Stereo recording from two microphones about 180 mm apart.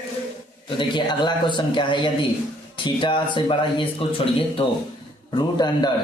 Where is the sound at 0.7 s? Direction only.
25° left (ahead or behind).